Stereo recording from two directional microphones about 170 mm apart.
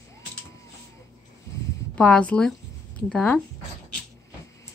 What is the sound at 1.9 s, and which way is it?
Speech, 5° left (ahead or behind).